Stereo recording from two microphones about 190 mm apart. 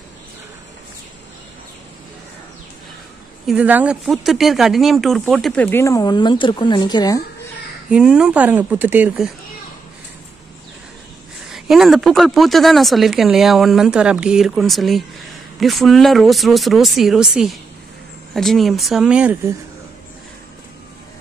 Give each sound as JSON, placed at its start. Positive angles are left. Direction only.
{"t": 3.4, "sound": "speech", "side_deg": -5}
{"t": 7.9, "sound": "speech", "side_deg": -5}
{"t": 11.5, "sound": "speech", "side_deg": 0}